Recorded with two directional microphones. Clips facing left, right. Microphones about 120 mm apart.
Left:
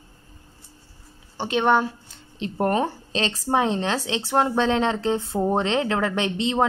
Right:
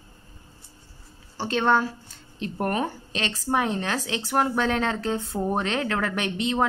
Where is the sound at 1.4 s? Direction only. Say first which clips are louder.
Left 2 dB; 15° left (ahead or behind).